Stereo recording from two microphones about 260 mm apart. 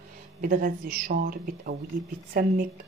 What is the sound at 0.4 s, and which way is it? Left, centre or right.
A woman's voice, right.